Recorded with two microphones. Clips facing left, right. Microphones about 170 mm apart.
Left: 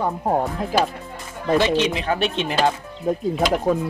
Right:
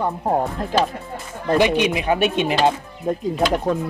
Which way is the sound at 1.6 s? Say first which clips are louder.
Right 2 dB; 15° right (ahead or behind).